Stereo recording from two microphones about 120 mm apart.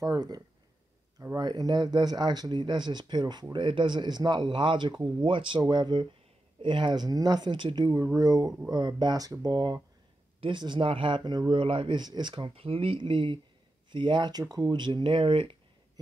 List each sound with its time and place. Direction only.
0.0 s speech: 35° right (ahead or behind)